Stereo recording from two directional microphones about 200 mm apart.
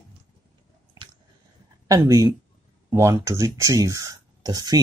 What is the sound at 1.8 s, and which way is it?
Speech, 15° right (ahead or behind).